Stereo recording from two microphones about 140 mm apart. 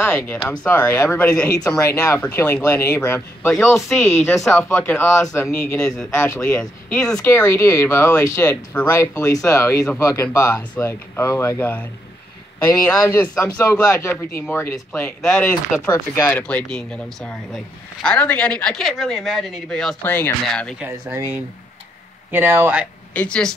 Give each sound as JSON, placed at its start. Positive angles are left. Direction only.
{"t": 0.0, "sound": "speech", "side_deg": 15}
{"t": 3.5, "sound": "speech", "side_deg": 0}
{"t": 4.4, "sound": "speech", "side_deg": 20}
{"t": 5.9, "sound": "speech", "side_deg": 5}
{"t": 6.2, "sound": "speech", "side_deg": 15}
{"t": 7.2, "sound": "speech", "side_deg": 15}
{"t": 13.9, "sound": "speech", "side_deg": 10}
{"t": 15.2, "sound": "speech", "side_deg": 5}
{"t": 20.0, "sound": "speech", "side_deg": 15}
{"t": 20.8, "sound": "speech", "side_deg": -15}
{"t": 23.1, "sound": "speech", "side_deg": 5}